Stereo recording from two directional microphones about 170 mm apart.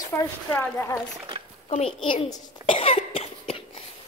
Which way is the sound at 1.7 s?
30° left (ahead or behind).